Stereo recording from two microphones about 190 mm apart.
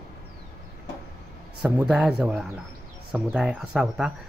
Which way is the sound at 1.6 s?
5° right (ahead or behind).